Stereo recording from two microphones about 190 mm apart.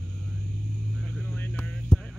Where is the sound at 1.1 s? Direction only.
10° left (ahead or behind).